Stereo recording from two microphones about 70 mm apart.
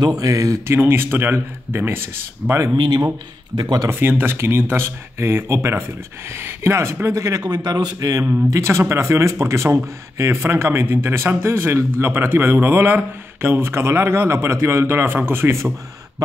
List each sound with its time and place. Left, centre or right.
0.2 s a man's voice: right
0.7 s a man's voice: right
3.5 s speech: right
4.2 s a man's voice: right
8.5 s a man's voice: right